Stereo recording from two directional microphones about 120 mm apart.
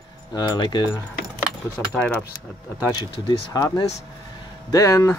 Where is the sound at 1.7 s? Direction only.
15° left (ahead or behind).